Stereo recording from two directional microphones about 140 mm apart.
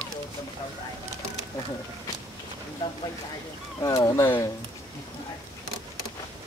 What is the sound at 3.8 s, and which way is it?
Speech, 25° left (ahead or behind).